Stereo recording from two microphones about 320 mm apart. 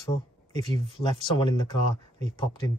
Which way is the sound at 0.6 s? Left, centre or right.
Centre.